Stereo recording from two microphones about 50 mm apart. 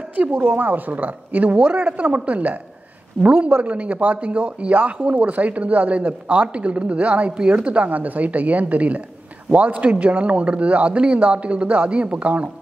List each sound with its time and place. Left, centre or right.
0.1 s a man's voice: right